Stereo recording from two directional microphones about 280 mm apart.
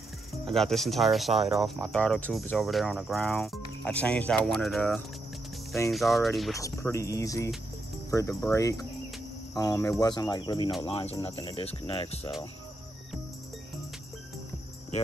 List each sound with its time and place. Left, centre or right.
0.5 s speech: centre
6.6 s speech: centre